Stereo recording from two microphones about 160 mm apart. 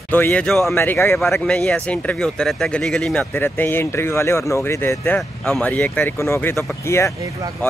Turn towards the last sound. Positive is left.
turn(degrees=15)  # may be behind; listen again after turning